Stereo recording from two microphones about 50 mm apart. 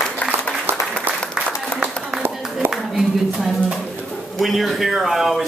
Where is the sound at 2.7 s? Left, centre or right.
Centre.